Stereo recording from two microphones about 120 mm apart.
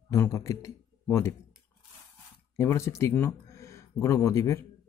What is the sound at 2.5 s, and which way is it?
Speech, 25° left (ahead or behind).